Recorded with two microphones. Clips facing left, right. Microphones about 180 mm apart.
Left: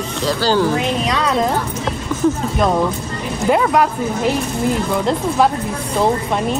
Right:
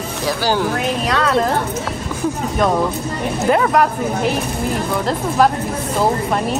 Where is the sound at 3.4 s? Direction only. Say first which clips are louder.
Even; centre (ahead or behind).